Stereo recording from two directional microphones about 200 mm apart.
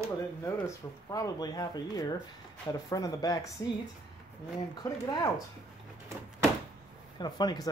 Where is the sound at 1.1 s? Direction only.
20° left (ahead or behind).